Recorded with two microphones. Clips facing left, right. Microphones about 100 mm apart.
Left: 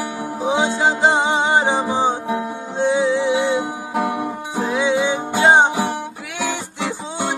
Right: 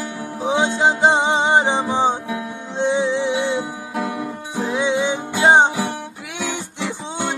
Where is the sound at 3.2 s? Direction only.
15° left (ahead or behind).